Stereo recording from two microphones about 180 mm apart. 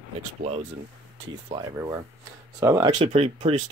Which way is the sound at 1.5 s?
20° right (ahead or behind).